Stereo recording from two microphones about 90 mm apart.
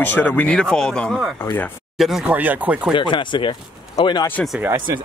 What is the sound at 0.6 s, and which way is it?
Speech, 5° left (ahead or behind).